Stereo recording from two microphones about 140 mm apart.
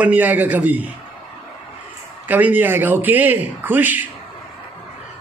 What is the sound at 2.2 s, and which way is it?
A man's voice, 10° right (ahead or behind).